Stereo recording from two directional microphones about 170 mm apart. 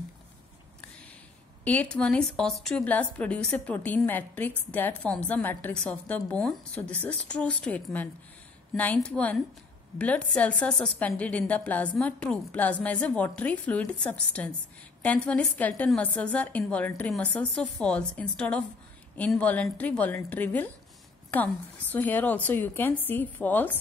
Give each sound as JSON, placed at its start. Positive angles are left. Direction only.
{"t": 1.6, "sound": "a woman's voice", "side_deg": 10}